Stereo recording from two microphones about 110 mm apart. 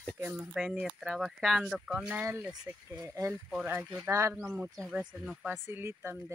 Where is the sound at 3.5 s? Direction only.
10° right (ahead or behind).